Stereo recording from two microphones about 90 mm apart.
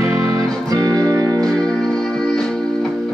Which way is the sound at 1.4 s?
5° left (ahead or behind).